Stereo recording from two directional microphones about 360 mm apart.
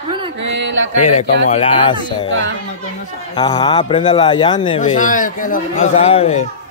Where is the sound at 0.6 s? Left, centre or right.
Right.